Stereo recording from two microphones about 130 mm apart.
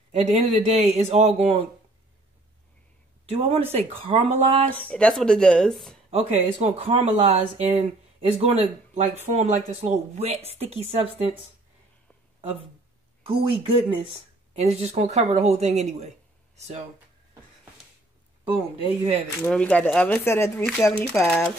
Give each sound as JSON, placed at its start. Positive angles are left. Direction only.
{"t": 0.1, "sound": "speech", "side_deg": -60}
{"t": 3.3, "sound": "speech", "side_deg": -50}
{"t": 4.6, "sound": "speech", "side_deg": 10}
{"t": 6.0, "sound": "speech", "side_deg": -55}
{"t": 13.2, "sound": "speech", "side_deg": -45}
{"t": 18.8, "sound": "speech", "side_deg": -50}
{"t": 19.4, "sound": "speech", "side_deg": 10}
{"t": 21.1, "sound": "speech", "side_deg": 5}